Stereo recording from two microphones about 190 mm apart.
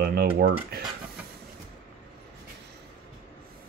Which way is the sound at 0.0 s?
55° right (ahead or behind).